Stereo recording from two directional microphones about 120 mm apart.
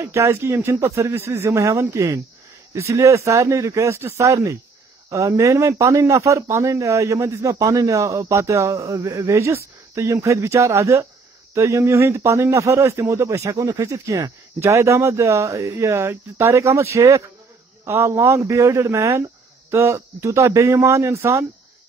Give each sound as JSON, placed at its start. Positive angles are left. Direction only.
{"t": 0.0, "sound": "speech", "side_deg": -20}